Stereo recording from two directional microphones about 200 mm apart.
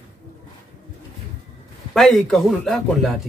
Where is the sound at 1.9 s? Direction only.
Centre (ahead or behind).